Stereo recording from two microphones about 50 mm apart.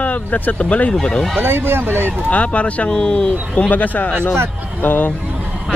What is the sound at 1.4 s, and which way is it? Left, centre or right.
Speech, right.